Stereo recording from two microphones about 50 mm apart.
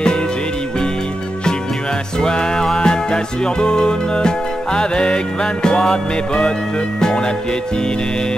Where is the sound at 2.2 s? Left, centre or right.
Centre.